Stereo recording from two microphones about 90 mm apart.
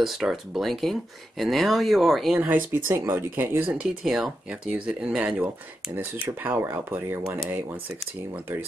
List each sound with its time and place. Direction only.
0.0 s speech: 5° right (ahead or behind)
2.3 s speech: 20° right (ahead or behind)
3.8 s speech: 5° right (ahead or behind)
6.2 s speech: 25° right (ahead or behind)